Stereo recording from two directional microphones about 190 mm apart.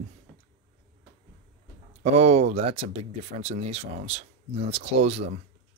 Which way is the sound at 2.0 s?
35° right (ahead or behind).